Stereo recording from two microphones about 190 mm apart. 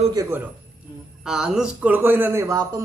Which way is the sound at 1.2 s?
5° right (ahead or behind).